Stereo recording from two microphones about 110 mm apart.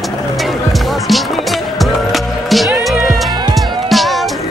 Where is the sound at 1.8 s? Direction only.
Centre (ahead or behind).